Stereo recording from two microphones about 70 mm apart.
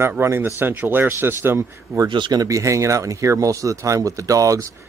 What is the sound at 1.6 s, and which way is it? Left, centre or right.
Speech, right.